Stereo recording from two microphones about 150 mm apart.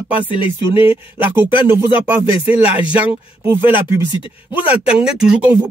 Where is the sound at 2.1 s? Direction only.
10° right (ahead or behind).